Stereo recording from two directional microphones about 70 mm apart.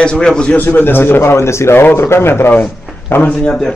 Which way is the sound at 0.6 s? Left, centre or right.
Left.